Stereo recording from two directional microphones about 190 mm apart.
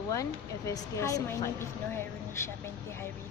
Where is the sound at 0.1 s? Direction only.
15° left (ahead or behind).